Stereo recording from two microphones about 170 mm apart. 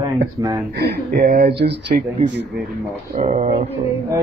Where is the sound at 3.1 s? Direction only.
40° right (ahead or behind).